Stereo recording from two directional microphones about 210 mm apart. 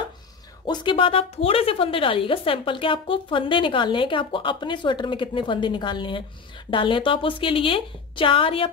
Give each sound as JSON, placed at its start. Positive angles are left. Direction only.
{"t": 0.7, "sound": "speech", "side_deg": 25}